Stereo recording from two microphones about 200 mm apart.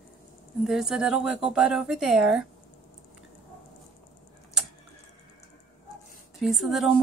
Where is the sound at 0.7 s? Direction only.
5° right (ahead or behind).